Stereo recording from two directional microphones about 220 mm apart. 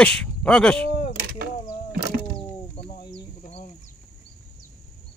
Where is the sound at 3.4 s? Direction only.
30° left (ahead or behind).